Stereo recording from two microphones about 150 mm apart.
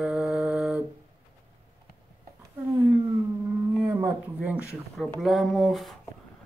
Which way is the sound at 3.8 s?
20° right (ahead or behind).